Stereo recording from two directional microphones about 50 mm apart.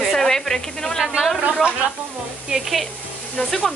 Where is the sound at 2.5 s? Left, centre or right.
Centre.